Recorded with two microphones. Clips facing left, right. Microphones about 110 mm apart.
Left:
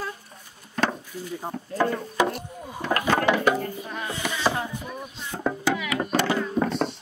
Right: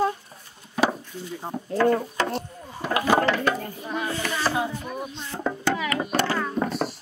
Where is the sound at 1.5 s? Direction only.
15° right (ahead or behind).